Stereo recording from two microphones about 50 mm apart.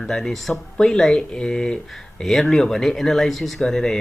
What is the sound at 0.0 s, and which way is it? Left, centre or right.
Speech, centre.